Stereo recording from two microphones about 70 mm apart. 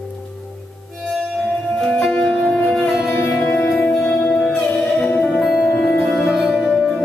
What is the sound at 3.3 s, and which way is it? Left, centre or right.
Music, centre.